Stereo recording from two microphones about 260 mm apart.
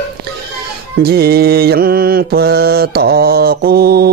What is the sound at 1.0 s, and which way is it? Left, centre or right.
Mantra, right.